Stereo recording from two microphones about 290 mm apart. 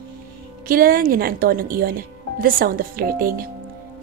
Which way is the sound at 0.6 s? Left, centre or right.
Right.